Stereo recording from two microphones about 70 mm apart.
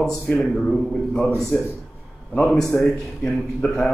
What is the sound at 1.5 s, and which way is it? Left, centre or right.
Speech, centre.